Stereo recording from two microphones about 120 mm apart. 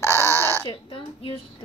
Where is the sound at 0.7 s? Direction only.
50° left (ahead or behind).